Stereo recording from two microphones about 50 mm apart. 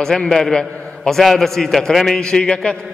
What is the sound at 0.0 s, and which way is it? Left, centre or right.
A man's voice, centre.